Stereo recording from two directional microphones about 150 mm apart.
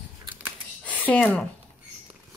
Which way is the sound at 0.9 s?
10° left (ahead or behind).